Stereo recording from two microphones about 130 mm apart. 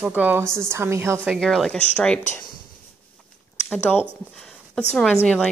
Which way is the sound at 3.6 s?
10° left (ahead or behind).